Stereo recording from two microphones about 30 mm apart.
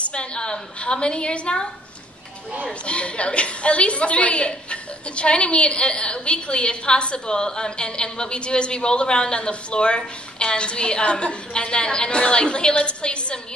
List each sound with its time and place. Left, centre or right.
0.1 s a woman's voice: left
2.8 s a woman's voice: left